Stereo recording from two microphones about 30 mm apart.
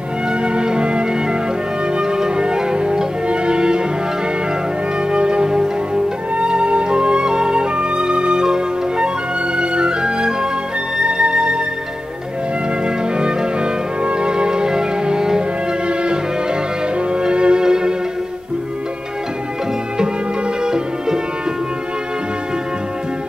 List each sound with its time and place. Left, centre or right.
0.3 s music: right
5.1 s music: right
8.5 s music: right
12.8 s music: right
17.6 s music: right
20.6 s music: right